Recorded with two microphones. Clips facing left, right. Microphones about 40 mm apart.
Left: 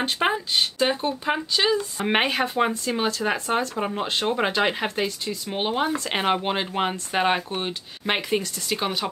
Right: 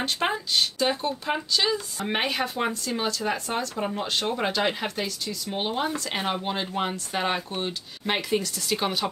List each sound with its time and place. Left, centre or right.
0.0 s speech: left
2.0 s speech: left
2.3 s speech: left; by 9.1 s centre